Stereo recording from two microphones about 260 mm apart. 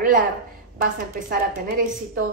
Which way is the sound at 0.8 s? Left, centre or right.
Right.